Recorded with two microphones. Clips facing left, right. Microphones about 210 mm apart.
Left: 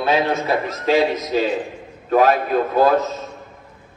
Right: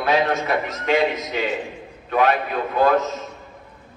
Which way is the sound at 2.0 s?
45° left (ahead or behind).